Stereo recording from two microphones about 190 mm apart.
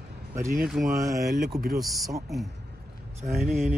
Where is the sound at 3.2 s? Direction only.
Centre (ahead or behind).